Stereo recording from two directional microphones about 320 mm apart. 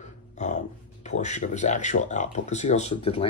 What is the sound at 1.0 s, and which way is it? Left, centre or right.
Speech, left.